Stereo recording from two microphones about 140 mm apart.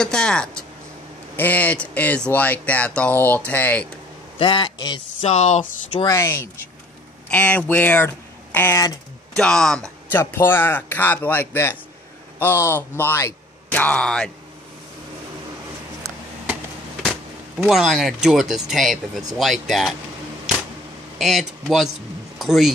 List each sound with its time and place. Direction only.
0.0 s speech: 5° left (ahead or behind)
4.4 s speech: 35° left (ahead or behind)
5.2 s speech: 55° left (ahead or behind)
5.9 s speech: 20° left (ahead or behind); by 9.8 s 5° left (ahead or behind)
10.1 s speech: 15° left (ahead or behind)
17.6 s speech: centre (ahead or behind)
21.2 s speech: centre (ahead or behind)